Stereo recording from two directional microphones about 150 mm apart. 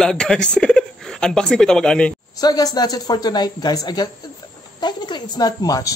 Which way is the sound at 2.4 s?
25° left (ahead or behind).